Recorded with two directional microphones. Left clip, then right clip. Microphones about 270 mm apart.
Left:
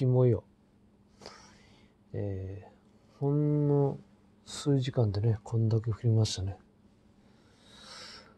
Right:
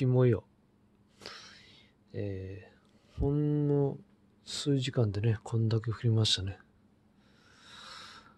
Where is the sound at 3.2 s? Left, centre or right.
Right.